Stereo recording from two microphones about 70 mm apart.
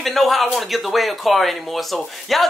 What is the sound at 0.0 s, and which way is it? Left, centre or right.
Speech, centre.